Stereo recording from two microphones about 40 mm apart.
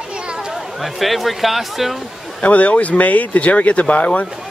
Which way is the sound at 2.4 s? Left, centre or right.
Left.